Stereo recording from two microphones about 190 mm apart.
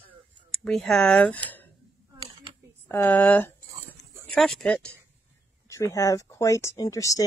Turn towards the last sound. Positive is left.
turn(degrees=15)  # may be behind; listen again after turning